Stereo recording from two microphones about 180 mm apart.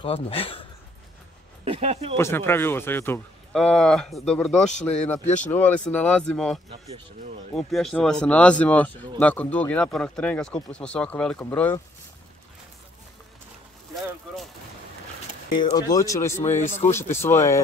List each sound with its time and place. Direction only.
0.0 s speech: 30° left (ahead or behind)
1.6 s speech: 35° right (ahead or behind)
2.1 s speech: 15° left (ahead or behind)
4.6 s speech: 40° left (ahead or behind)
4.9 s speech: 5° left (ahead or behind)
15.6 s speech: 20° left (ahead or behind)